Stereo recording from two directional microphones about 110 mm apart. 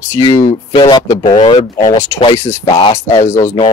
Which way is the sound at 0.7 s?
45° left (ahead or behind).